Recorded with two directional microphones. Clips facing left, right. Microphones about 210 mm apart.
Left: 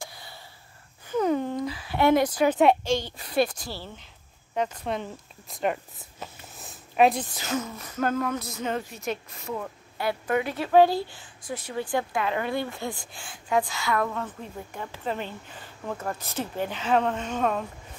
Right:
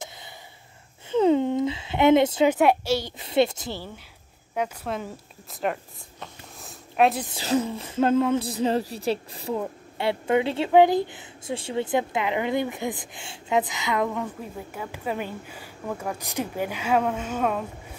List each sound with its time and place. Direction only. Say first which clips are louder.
1.0 s a sound: right 5 dB; 25° right (ahead or behind)
2.5 s a woman's voice: even; 5° right (ahead or behind)
3.2 s speech: right 3 dB; 25° right (ahead or behind)
4.6 s speech: even; 5° right (ahead or behind)
5.5 s a sound: even; centre (ahead or behind)
7.3 s speech: right 6 dB; 30° right (ahead or behind); by 17.6 s 5° right (ahead or behind)